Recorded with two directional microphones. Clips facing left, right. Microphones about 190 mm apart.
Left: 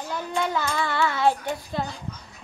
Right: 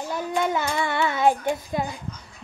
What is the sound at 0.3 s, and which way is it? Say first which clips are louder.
A child's voice: right 2 dB; 20° right (ahead or behind).